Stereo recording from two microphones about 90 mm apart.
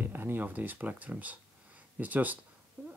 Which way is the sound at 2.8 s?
20° right (ahead or behind).